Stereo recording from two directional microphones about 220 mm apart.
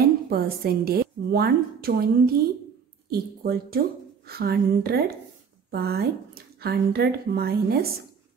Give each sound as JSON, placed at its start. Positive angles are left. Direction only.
{"t": 0.0, "sound": "a woman's voice", "side_deg": -45}